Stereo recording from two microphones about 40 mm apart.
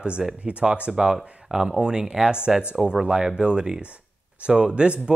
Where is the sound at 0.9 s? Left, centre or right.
Centre.